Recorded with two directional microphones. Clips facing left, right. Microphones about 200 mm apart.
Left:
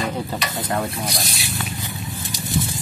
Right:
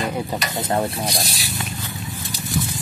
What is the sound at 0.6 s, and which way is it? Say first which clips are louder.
Speech: right 3 dB; 25° right (ahead or behind).